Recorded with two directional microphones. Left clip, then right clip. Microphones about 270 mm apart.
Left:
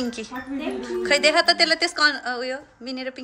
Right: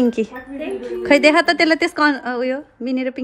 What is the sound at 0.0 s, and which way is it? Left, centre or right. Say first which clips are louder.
A woman's voice: right 10 dB; centre.